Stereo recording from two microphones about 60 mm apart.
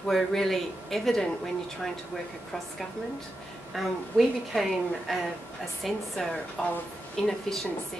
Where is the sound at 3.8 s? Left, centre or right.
Centre.